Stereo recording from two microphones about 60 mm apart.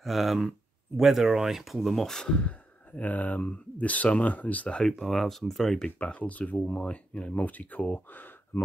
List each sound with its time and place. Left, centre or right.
0.0 s speech: centre
2.9 s speech: left
5.0 s speech: centre
5.9 s speech: left